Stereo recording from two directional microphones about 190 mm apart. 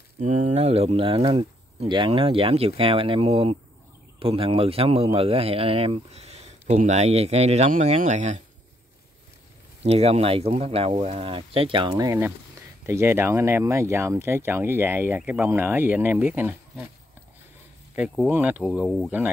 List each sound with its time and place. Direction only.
0.2 s speech: 40° right (ahead or behind)
9.8 s speech: 35° right (ahead or behind)
11.9 s speech: 15° right (ahead or behind)
17.9 s speech: 5° right (ahead or behind)
18.9 s speech: 5° left (ahead or behind)